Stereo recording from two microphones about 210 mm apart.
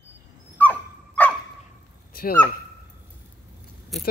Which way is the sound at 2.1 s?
45° left (ahead or behind).